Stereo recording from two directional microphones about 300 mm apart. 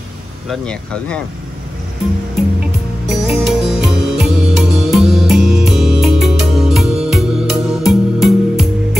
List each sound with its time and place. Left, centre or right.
0.5 s speech: centre
3.1 s music: centre